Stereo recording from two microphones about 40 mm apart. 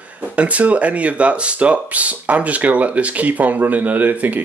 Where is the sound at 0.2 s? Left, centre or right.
Right.